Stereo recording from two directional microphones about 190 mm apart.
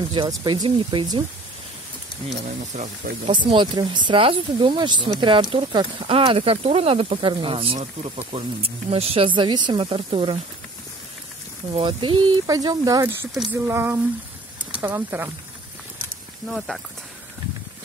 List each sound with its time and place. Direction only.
0.4 s speech: 20° right (ahead or behind)
2.2 s speech: 35° right (ahead or behind)
3.3 s speech: 25° right (ahead or behind)
11.7 s speech: 25° right (ahead or behind)
13.3 s speech: 5° right (ahead or behind)
16.4 s speech: centre (ahead or behind)